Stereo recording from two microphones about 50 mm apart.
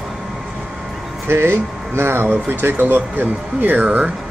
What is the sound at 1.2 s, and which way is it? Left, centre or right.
Speech, right.